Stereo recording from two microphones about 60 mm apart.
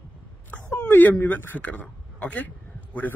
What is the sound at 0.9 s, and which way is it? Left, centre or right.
A man's voice, left.